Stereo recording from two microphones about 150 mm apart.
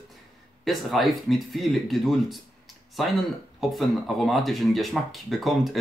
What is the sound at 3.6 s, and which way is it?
Speech, centre (ahead or behind).